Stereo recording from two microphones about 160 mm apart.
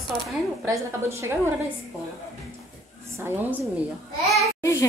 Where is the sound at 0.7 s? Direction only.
15° right (ahead or behind).